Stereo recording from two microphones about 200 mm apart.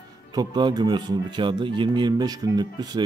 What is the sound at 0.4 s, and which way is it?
Speech, 20° right (ahead or behind).